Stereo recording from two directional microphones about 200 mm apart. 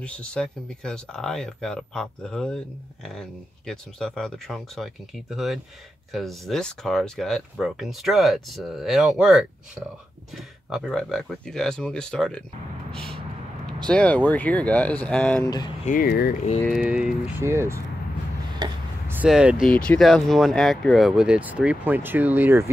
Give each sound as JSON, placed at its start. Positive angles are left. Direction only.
{"t": 0.0, "sound": "speech", "side_deg": 5}
{"t": 12.9, "sound": "vehicle", "side_deg": 0}
{"t": 13.7, "sound": "speech", "side_deg": 5}
{"t": 15.4, "sound": "speech", "side_deg": 20}
{"t": 15.8, "sound": "speech", "side_deg": 45}
{"t": 16.6, "sound": "speech", "side_deg": -5}
{"t": 18.6, "sound": "a sound", "side_deg": -10}
{"t": 19.7, "sound": "speech", "side_deg": 5}